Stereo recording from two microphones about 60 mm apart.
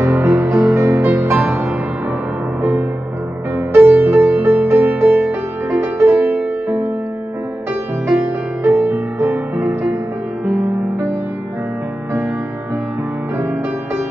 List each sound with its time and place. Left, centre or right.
0.0 s music: right
3.5 s music: right
5.7 s music: right
6.0 s music: right
8.6 s music: right